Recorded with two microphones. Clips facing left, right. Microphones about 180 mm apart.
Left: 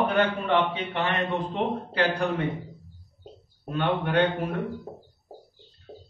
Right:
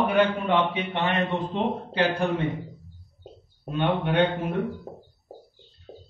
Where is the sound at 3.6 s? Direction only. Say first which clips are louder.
Right 1 dB; 20° right (ahead or behind).